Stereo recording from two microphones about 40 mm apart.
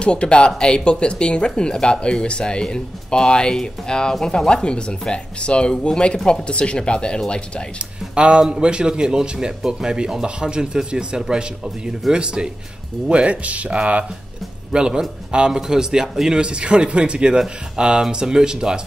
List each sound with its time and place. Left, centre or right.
0.0 s speech: left
8.1 s a man's voice: right
14.7 s a man's voice: right
16.3 s a man's voice: right